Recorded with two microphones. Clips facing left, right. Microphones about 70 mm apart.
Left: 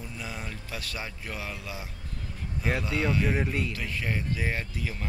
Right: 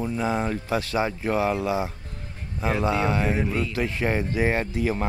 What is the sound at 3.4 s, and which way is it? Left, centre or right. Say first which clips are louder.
Speech: right 4 dB; centre.